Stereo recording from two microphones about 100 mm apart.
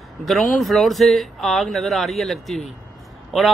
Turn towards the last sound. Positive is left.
turn(degrees=0)  # may be behind; listen again after turning